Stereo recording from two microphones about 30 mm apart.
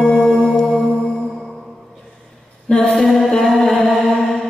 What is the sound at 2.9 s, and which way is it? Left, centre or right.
Music, centre.